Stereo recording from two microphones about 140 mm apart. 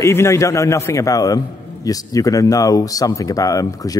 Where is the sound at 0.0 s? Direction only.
20° left (ahead or behind).